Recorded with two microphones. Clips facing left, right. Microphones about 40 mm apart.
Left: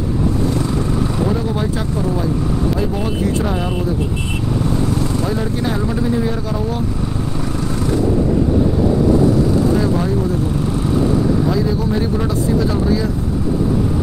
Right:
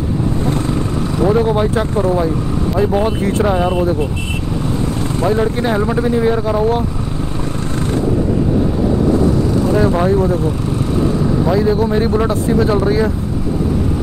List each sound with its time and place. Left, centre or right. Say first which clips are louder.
0.5 s vehicle: right 1 dB; right
1.5 s speech: right 5 dB; right
3.4 s speech: right 6 dB; centre
4.8 s speech: right 2 dB; right
9.8 s speech: right 4 dB; right
11.4 s speech: right 4 dB; right